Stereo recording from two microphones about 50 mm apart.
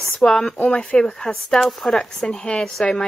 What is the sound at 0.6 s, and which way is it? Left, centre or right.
Speech, left.